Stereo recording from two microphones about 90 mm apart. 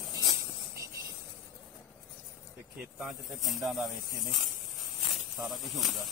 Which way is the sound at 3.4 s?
Centre (ahead or behind).